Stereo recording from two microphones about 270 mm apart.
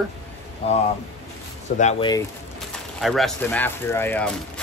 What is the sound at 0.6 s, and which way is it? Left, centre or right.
Speech, left.